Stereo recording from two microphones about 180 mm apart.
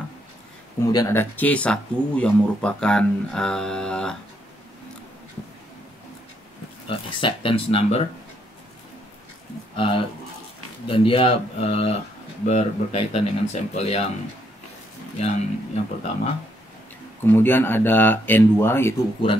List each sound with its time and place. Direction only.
0.8 s speech: 20° left (ahead or behind)
6.9 s speech: 30° left (ahead or behind)
9.8 s speech: 30° left (ahead or behind)
15.1 s speech: 35° left (ahead or behind)
17.2 s speech: 10° left (ahead or behind)